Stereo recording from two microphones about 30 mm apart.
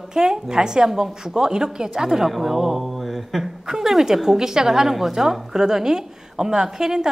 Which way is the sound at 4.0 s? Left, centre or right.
Centre.